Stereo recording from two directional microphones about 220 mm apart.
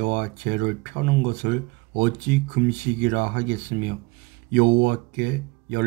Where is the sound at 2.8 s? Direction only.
45° right (ahead or behind).